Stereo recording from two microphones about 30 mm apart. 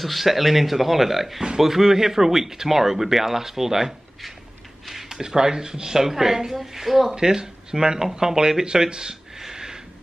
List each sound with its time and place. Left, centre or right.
0.0 s speech: centre
4.8 s a sound: centre
5.2 s speech: right
6.0 s speech: centre
7.2 s speech: right
9.4 s a sound: centre